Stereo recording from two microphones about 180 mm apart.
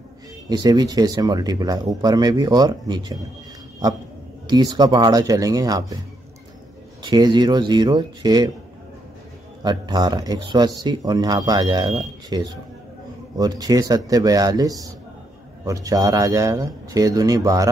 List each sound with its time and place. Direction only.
0.5 s speech: 20° right (ahead or behind)
4.5 s speech: 25° right (ahead or behind)
7.0 s speech: 25° right (ahead or behind)
9.6 s speech: 25° right (ahead or behind)